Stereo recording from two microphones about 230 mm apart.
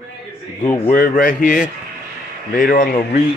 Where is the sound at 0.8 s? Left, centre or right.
Left.